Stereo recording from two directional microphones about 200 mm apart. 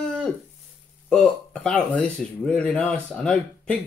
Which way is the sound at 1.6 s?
5° left (ahead or behind).